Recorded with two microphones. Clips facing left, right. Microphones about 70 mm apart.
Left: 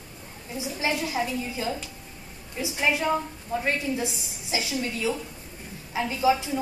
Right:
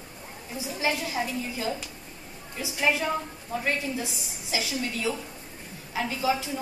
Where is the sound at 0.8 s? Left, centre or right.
Left.